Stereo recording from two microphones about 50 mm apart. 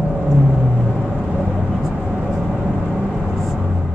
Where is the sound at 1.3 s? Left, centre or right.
Centre.